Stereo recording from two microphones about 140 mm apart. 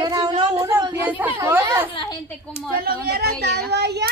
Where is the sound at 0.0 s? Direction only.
30° right (ahead or behind).